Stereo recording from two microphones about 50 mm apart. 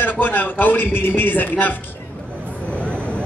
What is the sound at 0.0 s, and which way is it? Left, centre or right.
A man's voice, left.